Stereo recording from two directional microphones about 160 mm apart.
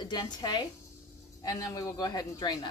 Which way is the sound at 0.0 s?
25° left (ahead or behind).